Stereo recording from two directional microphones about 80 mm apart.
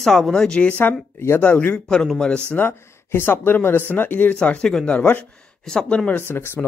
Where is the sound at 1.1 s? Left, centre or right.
Left.